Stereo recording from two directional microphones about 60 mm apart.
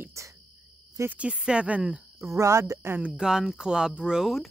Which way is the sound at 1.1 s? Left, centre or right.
Centre.